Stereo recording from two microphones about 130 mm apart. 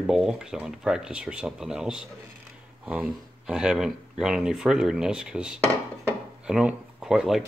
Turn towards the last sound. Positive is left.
turn(degrees=-5)  # may be behind; listen again after turning